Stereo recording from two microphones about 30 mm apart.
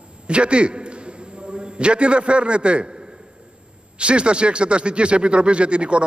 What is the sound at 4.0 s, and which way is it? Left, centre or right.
Speech, right.